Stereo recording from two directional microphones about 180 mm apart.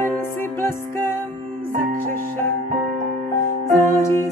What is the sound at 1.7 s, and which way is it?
Music, 50° right (ahead or behind).